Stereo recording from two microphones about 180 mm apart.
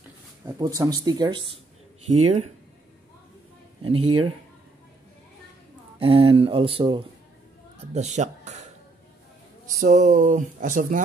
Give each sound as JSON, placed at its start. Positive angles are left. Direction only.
{"t": 0.5, "sound": "speech", "side_deg": -20}
{"t": 2.0, "sound": "speech", "side_deg": -35}
{"t": 3.8, "sound": "speech", "side_deg": -30}
{"t": 5.9, "sound": "speech", "side_deg": -30}
{"t": 7.9, "sound": "speech", "side_deg": -40}
{"t": 9.8, "sound": "speech", "side_deg": -40}